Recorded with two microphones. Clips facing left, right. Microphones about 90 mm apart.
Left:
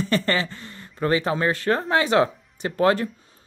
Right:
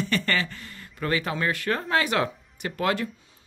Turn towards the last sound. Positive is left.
turn(degrees=35)  # may be behind; listen again after turning